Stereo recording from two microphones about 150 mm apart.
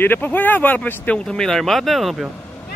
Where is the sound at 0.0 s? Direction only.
10° left (ahead or behind).